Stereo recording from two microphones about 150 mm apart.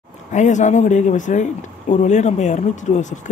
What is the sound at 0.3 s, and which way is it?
Speech, 55° left (ahead or behind).